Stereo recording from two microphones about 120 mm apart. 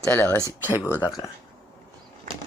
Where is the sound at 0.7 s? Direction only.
15° right (ahead or behind).